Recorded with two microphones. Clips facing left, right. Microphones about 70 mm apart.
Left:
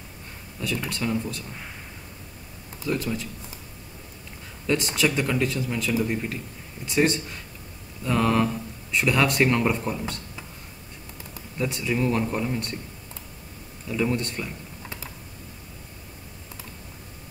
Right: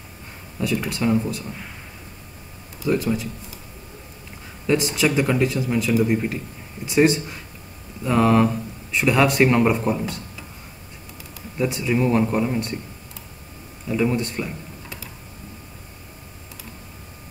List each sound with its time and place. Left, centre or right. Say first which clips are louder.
0.6 s speech: right 5 dB; centre
2.9 s speech: right 6 dB; centre
4.6 s speech: right 4 dB; centre
5.9 s speech: right 6 dB; right
6.9 s speech: right 5 dB; centre
11.5 s speech: right 5 dB; centre
13.8 s speech: right 4 dB; centre